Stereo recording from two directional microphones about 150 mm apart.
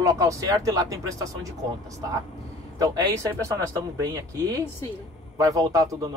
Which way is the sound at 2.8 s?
25° right (ahead or behind).